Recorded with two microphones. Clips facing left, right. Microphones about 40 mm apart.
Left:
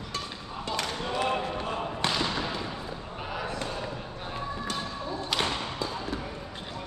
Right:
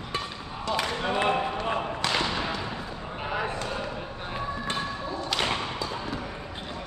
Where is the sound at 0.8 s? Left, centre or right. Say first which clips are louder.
Right 3 dB; right.